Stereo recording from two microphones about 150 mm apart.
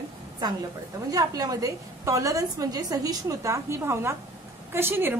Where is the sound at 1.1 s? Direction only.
25° right (ahead or behind).